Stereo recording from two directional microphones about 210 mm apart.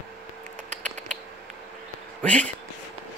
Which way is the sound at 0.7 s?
35° right (ahead or behind).